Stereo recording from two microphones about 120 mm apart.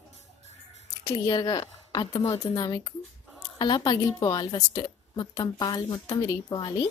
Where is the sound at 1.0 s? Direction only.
35° left (ahead or behind).